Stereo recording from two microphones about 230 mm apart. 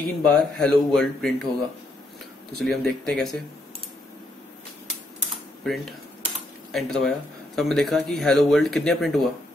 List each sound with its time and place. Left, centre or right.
0.0 s speech: centre
2.6 s speech: centre
6.7 s speech: centre